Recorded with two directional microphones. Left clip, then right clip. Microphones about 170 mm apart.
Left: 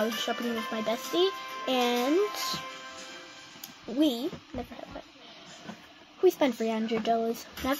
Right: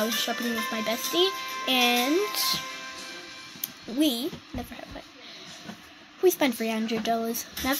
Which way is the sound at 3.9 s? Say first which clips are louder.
Right 1 dB; 5° right (ahead or behind).